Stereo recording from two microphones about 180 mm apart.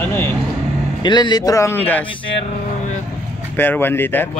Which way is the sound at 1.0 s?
25° left (ahead or behind).